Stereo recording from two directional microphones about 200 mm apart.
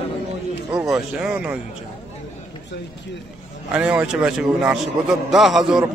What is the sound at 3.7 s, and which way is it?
A man's voice, 5° right (ahead or behind).